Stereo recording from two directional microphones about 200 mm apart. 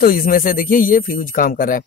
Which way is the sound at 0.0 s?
45° left (ahead or behind).